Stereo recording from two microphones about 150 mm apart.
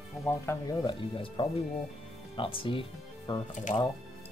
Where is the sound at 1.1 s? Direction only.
35° left (ahead or behind).